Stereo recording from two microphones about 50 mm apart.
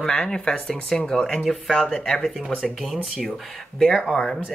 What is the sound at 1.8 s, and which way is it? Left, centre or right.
Speech, centre.